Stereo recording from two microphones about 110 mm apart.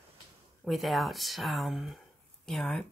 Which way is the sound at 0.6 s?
Centre (ahead or behind).